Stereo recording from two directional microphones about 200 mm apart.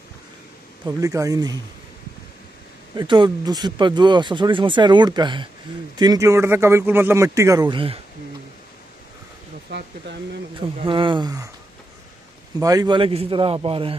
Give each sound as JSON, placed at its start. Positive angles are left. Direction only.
{"t": 0.8, "sound": "speech", "side_deg": -15}
{"t": 3.0, "sound": "speech", "side_deg": -20}
{"t": 9.7, "sound": "speech", "side_deg": -55}
{"t": 10.8, "sound": "speech", "side_deg": -25}
{"t": 12.5, "sound": "speech", "side_deg": -20}